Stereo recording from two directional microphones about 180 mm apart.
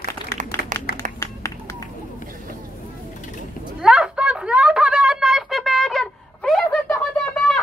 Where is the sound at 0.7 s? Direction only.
45° right (ahead or behind).